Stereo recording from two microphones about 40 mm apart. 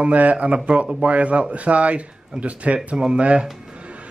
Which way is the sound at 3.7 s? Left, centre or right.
Right.